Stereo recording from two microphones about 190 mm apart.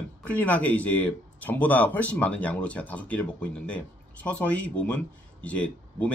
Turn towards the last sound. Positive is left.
turn(degrees=5)  # may be behind; listen again after turning